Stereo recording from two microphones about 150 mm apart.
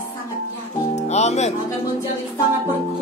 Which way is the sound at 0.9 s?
45° left (ahead or behind).